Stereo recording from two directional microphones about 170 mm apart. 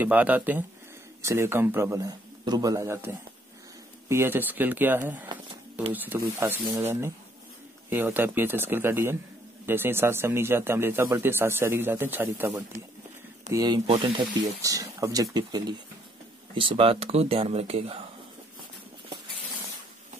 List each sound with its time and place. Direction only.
0.0 s a man's voice: 10° right (ahead or behind); by 18.0 s 35° right (ahead or behind)